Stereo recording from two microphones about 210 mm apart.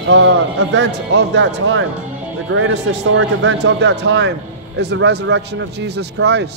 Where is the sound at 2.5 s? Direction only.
70° right (ahead or behind); by 6.4 s 55° right (ahead or behind).